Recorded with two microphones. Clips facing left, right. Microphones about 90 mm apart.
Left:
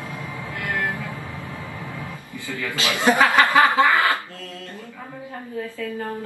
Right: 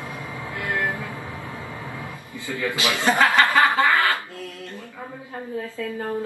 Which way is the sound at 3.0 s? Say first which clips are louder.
Left 2 dB; 15° left (ahead or behind).